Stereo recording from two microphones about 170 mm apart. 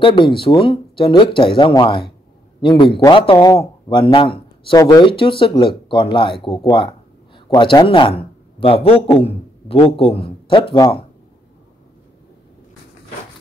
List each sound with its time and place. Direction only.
0.0 s a man's voice: 30° left (ahead or behind)